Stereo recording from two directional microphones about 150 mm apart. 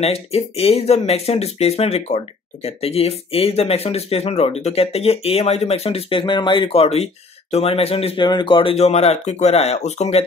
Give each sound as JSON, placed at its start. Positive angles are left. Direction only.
{"t": 0.0, "sound": "speech", "side_deg": 40}